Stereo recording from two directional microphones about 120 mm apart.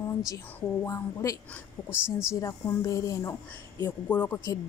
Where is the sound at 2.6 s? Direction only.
30° left (ahead or behind).